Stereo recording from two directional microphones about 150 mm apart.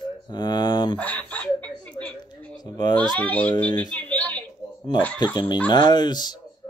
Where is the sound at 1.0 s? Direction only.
10° left (ahead or behind).